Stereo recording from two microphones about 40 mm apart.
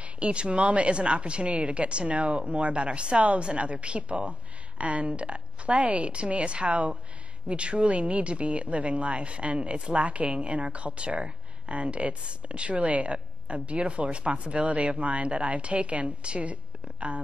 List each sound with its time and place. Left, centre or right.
0.0 s speech: right